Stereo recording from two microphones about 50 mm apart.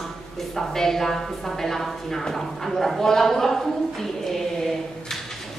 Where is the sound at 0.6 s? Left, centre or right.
Centre.